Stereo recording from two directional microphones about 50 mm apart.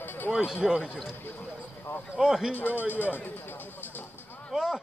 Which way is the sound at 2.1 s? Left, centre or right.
Centre.